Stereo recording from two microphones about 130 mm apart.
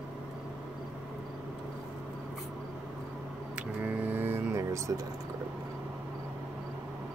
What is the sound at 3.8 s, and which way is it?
Music, 15° right (ahead or behind).